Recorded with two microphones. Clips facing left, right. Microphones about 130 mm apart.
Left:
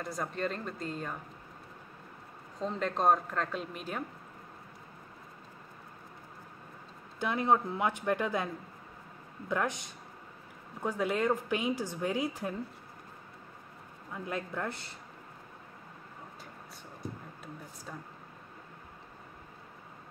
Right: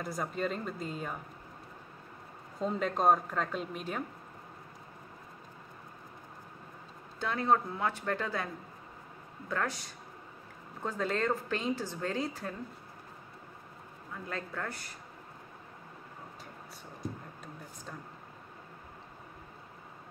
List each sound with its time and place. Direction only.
0.0 s a woman's voice: 5° right (ahead or behind)
2.6 s a woman's voice: 5° right (ahead or behind)
7.2 s a woman's voice: 15° left (ahead or behind)
9.5 s a man's voice: 20° left (ahead or behind)
14.1 s a man's voice: 15° left (ahead or behind)